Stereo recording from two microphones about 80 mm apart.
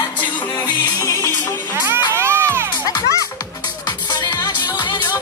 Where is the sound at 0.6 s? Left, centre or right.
Left.